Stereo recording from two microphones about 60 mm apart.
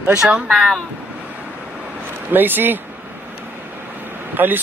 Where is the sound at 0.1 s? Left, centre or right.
Centre.